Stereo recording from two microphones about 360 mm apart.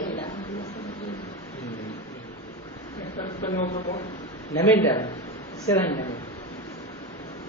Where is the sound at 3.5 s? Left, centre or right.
Centre.